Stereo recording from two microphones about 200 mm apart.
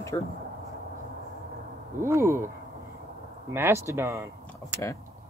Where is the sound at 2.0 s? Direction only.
15° right (ahead or behind).